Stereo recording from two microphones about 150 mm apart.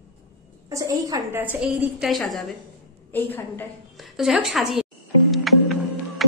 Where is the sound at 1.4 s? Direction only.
10° right (ahead or behind).